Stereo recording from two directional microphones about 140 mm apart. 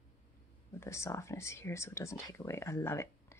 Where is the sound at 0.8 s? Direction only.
20° left (ahead or behind).